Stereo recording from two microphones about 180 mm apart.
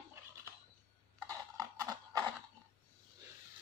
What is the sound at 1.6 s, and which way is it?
Horse, 20° right (ahead or behind).